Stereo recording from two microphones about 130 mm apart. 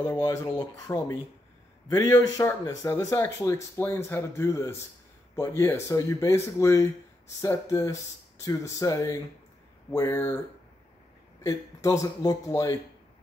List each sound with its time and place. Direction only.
0.1 s speech: 25° left (ahead or behind)
11.4 s speech: 25° left (ahead or behind)